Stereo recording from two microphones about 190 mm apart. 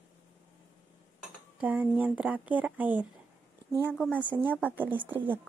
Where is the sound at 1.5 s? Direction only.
10° right (ahead or behind).